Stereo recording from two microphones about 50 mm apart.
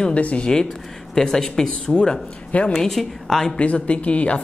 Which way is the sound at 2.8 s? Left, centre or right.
Centre.